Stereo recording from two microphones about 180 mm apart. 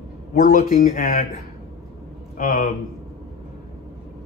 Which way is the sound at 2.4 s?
55° left (ahead or behind).